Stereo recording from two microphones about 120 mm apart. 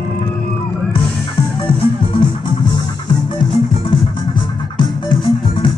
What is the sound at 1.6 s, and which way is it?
Music, 45° left (ahead or behind).